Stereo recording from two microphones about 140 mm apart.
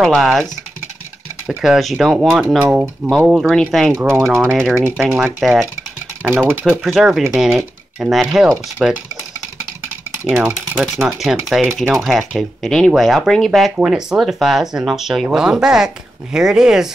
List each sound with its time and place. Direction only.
0.0 s speech: centre (ahead or behind)
1.6 s speech: centre (ahead or behind)
2.6 s speech: 10° right (ahead or behind)
4.0 s speech: 15° right (ahead or behind)
5.4 s speech: centre (ahead or behind)
6.2 s speech: 15° right (ahead or behind)
6.6 s speech: centre (ahead or behind)
8.7 s speech: 10° right (ahead or behind)
10.2 s speech: 10° right (ahead or behind)
11.1 s speech: centre (ahead or behind)